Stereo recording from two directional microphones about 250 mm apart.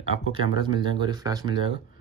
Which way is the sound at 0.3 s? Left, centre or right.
Centre.